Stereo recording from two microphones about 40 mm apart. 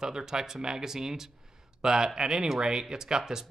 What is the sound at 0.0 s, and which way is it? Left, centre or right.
Speech, centre.